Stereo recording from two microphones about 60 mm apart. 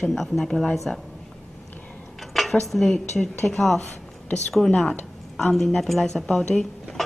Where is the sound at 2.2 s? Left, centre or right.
Centre.